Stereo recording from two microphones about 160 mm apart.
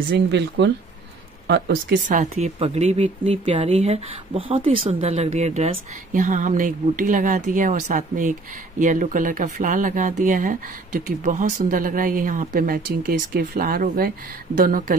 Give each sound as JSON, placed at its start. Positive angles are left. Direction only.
{"t": 0.1, "sound": "speech", "side_deg": -90}
{"t": 2.0, "sound": "speech", "side_deg": -45}